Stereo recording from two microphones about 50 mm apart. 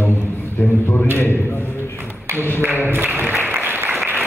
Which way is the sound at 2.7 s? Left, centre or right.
Right.